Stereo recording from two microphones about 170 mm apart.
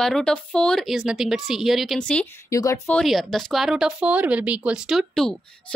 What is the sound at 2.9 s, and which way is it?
Speech, centre (ahead or behind).